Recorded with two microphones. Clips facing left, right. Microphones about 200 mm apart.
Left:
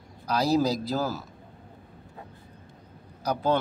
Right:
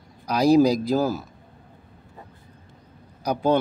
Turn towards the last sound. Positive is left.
turn(degrees=-15)  # may be behind; listen again after turning